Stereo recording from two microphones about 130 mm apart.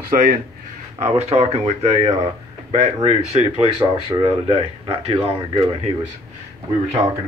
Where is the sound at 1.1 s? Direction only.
55° right (ahead or behind).